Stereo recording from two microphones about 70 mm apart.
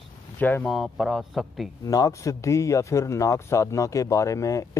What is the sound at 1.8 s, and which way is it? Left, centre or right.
Speech, left.